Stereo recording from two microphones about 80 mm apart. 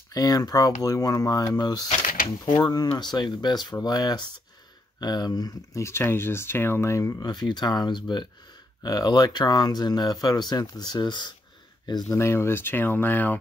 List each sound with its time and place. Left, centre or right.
0.1 s speech: left
5.8 s speech: left
7.2 s speech: left
8.8 s speech: left
11.8 s speech: left
12.2 s speech: left